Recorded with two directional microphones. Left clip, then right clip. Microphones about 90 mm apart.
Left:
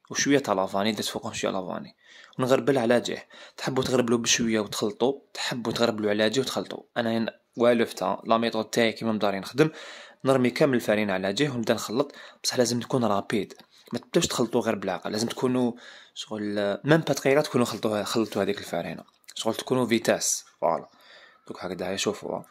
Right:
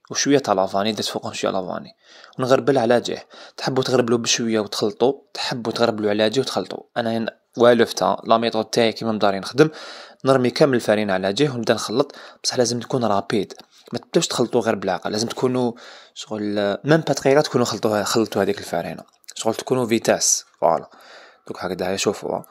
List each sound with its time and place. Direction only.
0.1 s speech: 25° right (ahead or behind); by 8.5 s 50° right (ahead or behind)
8.5 s speech: 25° right (ahead or behind)
12.4 s speech: 20° right (ahead or behind); by 16.8 s 35° right (ahead or behind)
17.0 s speech: 20° right (ahead or behind); by 22.4 s 35° right (ahead or behind)